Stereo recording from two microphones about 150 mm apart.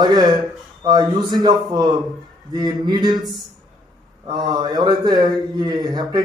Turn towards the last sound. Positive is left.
turn(degrees=-25)  # may be behind; listen again after turning